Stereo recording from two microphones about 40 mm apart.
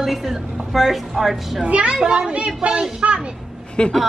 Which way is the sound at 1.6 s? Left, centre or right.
Right.